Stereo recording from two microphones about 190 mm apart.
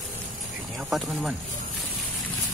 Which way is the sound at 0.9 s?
Centre (ahead or behind).